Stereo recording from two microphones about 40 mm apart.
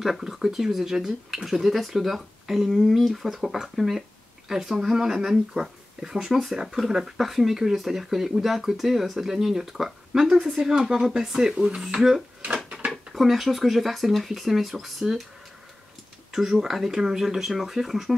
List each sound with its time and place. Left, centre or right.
0.0 s speech: centre
5.5 s speech: centre
13.1 s speech: centre
16.3 s speech: centre